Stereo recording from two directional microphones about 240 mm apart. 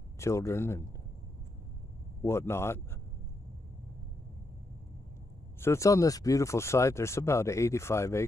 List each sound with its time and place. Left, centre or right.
0.2 s speech: centre
2.2 s speech: centre
5.6 s speech: centre